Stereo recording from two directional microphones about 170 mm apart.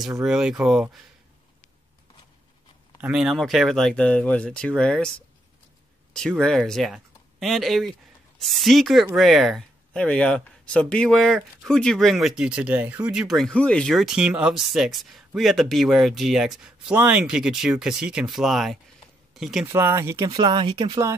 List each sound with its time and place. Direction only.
0.2 s speech: 5° right (ahead or behind)
3.0 s speech: 5° right (ahead or behind)
6.1 s speech: 5° left (ahead or behind)
19.6 s speech: 15° right (ahead or behind)
20.2 s speech: 25° right (ahead or behind)